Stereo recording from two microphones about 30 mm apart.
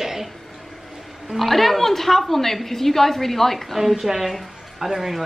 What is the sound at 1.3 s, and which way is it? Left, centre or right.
A woman's voice, centre.